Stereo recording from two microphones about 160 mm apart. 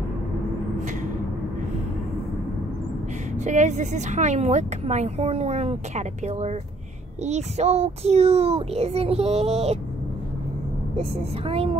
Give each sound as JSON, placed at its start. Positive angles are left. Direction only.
{"t": 3.3, "sound": "a child's voice", "side_deg": -50}
{"t": 11.4, "sound": "a child's voice", "side_deg": -35}